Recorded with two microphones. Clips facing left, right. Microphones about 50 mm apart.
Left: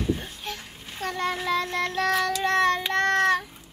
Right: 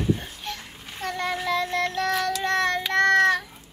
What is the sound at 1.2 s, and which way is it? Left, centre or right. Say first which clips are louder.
Child singing: even; centre.